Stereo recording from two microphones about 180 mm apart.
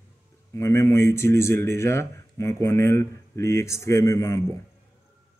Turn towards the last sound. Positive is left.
turn(degrees=15)  # may be behind; listen again after turning